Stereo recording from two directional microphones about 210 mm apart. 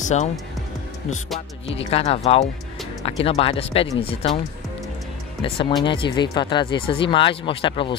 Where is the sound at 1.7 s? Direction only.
30° left (ahead or behind).